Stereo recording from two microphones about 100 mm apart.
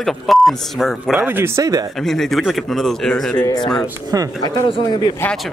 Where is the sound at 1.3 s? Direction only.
25° right (ahead or behind).